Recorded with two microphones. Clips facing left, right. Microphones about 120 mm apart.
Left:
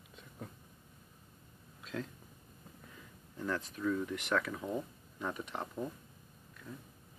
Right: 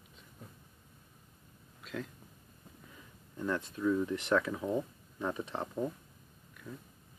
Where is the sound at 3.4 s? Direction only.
15° right (ahead or behind).